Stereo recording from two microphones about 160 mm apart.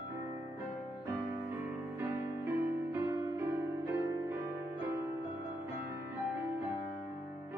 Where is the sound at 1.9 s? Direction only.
15° right (ahead or behind).